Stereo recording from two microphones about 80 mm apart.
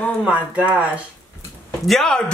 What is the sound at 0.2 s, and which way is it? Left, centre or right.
Speech, centre.